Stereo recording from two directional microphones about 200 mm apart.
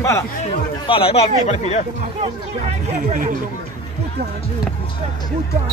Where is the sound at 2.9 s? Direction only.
40° right (ahead or behind).